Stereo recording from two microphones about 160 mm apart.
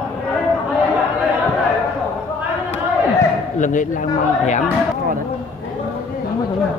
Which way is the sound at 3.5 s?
55° left (ahead or behind).